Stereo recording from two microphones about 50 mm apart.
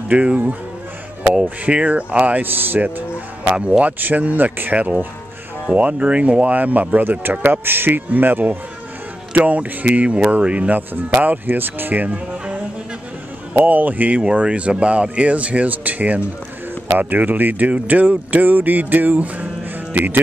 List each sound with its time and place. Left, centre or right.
0.1 s speech: right
2.4 s speech: right
3.5 s speech: right
4.0 s speech: right
9.3 s speech: right
11.0 s speech: right
13.6 s speech: right
14.2 s speech: right